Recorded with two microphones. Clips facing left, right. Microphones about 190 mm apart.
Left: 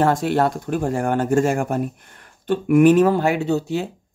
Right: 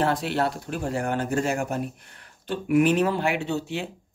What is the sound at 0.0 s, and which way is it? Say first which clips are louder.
Speech: left 6 dB; 45° left (ahead or behind).